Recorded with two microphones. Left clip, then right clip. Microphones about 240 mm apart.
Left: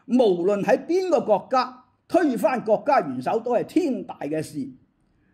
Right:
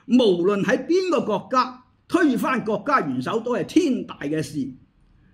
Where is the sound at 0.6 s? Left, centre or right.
Centre.